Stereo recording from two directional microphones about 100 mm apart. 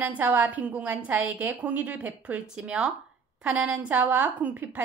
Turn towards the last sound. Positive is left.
turn(degrees=-15)  # may be behind; listen again after turning